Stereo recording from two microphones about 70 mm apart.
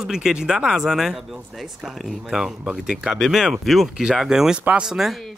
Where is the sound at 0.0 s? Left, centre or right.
Centre.